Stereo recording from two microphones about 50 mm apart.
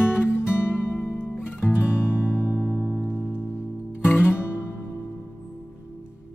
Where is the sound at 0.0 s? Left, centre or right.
Left.